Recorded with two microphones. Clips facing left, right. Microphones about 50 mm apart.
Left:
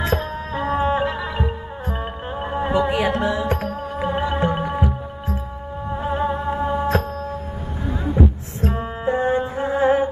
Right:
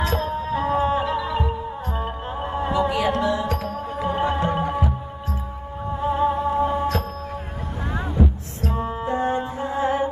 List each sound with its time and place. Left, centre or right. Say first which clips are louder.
0.0 s music: even; left
4.6 s music: left 1 dB; centre
6.0 s music: right 2 dB; left
8.2 s music: left 3 dB; left